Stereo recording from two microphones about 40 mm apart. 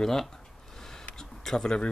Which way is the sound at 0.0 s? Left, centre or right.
Centre.